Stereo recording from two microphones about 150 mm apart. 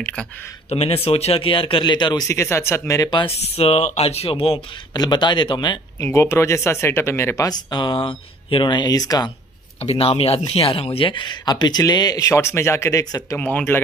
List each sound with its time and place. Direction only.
0.0 s speech: 5° left (ahead or behind)
0.7 s speech: 40° left (ahead or behind)
2.2 s speech: 20° left (ahead or behind)
3.1 s speech: 30° left (ahead or behind)
3.3 s speech: 45° left (ahead or behind)
4.9 s speech: 30° left (ahead or behind)
6.0 s speech: 20° left (ahead or behind)
9.8 s speech: 40° left (ahead or behind); by 13.4 s 20° left (ahead or behind)
13.4 s speech: 10° left (ahead or behind)